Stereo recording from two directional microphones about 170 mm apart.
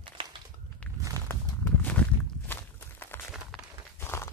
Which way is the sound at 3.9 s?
15° left (ahead or behind).